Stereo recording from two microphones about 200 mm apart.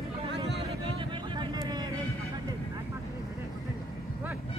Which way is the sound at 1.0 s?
20° right (ahead or behind).